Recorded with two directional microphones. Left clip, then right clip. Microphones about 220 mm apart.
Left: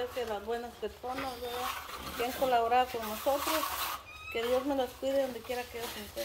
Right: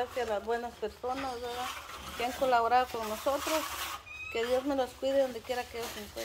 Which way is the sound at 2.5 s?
5° right (ahead or behind).